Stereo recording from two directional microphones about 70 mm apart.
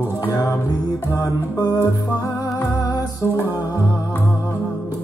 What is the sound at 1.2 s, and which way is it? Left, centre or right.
Music, left.